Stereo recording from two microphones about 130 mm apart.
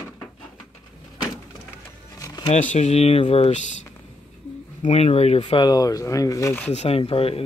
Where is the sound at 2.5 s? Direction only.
60° left (ahead or behind).